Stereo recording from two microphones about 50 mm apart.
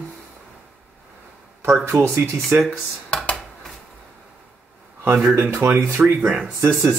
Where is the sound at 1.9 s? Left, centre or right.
Right.